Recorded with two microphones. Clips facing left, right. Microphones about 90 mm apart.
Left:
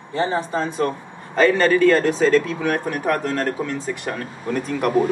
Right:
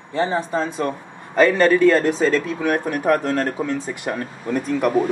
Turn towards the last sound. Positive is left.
turn(degrees=0)  # may be behind; listen again after turning